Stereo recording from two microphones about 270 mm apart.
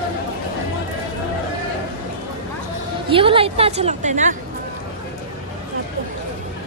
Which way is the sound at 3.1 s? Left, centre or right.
Centre.